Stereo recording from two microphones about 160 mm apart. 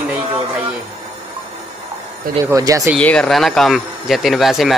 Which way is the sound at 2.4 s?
20° right (ahead or behind).